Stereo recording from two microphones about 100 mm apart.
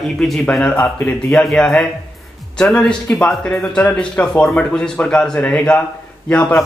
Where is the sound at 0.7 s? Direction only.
20° left (ahead or behind).